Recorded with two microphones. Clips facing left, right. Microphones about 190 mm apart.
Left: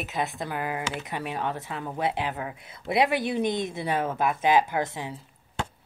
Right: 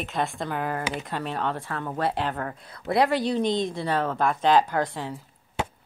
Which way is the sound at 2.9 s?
20° left (ahead or behind).